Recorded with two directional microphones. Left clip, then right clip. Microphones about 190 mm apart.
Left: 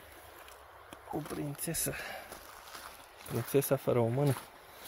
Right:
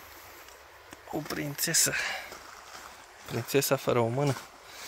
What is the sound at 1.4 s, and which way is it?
Speech, 5° left (ahead or behind).